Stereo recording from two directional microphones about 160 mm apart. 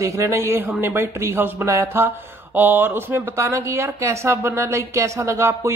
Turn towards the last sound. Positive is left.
turn(degrees=-15)  # may be behind; listen again after turning